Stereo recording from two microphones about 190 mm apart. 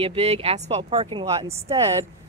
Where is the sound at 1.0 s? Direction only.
20° right (ahead or behind).